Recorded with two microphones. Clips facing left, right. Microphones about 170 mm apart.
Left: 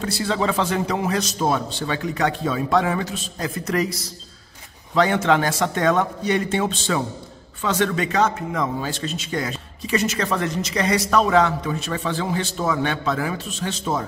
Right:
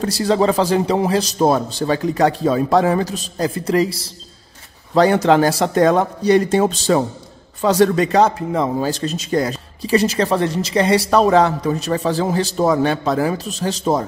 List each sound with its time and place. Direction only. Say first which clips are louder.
0.0 s a man's voice: right 7 dB; 40° right (ahead or behind)